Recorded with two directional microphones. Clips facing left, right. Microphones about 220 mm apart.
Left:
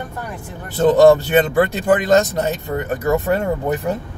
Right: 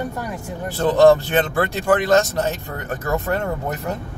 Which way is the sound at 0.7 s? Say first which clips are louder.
Left 3 dB; 20° left (ahead or behind).